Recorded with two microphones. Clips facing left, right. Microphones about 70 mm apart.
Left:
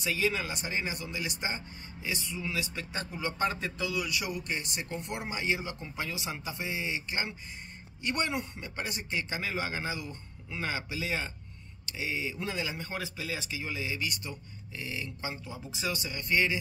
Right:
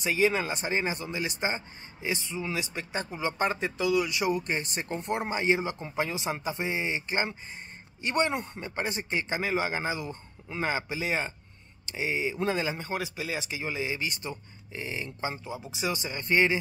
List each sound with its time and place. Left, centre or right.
0.0 s speech: right
12.9 s speech: centre